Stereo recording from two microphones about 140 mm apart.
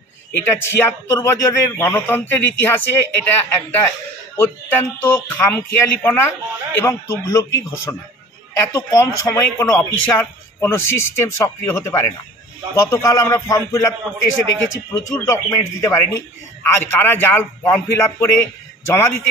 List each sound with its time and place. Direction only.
0.6 s a man's voice: 20° left (ahead or behind)
5.0 s a man's voice: 15° left (ahead or behind)
8.7 s a man's voice: 20° left (ahead or behind)